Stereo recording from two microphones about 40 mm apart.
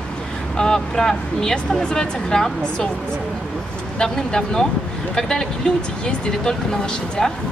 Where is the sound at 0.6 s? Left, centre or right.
Centre.